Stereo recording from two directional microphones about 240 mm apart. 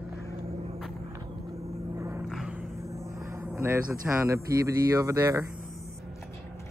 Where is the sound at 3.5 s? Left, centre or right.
Centre.